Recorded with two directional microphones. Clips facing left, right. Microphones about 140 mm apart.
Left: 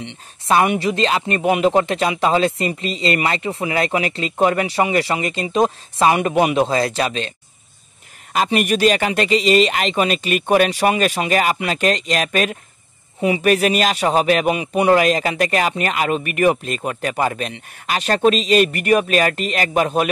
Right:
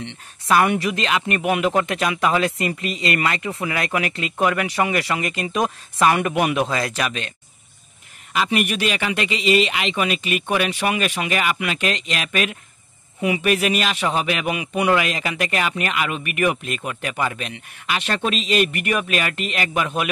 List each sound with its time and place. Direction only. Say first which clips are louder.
0.0 s speech: left 1 dB; 20° left (ahead or behind)
8.3 s speech: left 3 dB; 40° left (ahead or behind)